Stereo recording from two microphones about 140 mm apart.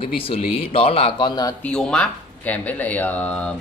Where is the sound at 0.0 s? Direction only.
40° left (ahead or behind).